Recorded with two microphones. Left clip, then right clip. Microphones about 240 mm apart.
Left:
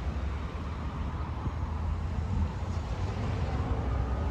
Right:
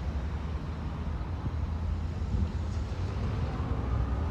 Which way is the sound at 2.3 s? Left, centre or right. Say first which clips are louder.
Left 1 dB; left.